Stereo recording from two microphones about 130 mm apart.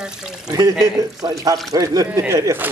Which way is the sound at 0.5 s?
30° right (ahead or behind).